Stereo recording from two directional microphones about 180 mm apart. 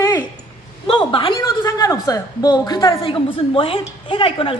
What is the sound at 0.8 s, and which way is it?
Speech, 30° left (ahead or behind).